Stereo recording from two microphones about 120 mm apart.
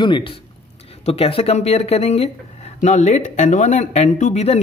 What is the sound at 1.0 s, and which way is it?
Speech, 55° left (ahead or behind).